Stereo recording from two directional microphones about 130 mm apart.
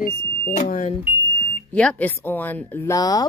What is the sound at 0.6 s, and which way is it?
Speech, 75° left (ahead or behind).